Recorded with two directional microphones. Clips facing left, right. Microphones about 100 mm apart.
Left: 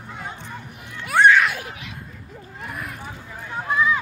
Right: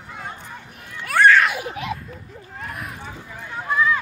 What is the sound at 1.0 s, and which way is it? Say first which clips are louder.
Music: even; 20° left (ahead or behind).